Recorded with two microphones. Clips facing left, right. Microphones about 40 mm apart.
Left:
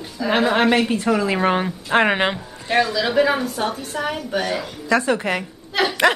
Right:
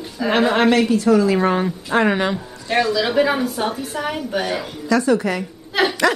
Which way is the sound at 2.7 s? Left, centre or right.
Centre.